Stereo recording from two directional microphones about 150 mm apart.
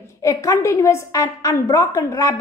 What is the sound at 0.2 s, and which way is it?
A woman's voice, 20° left (ahead or behind).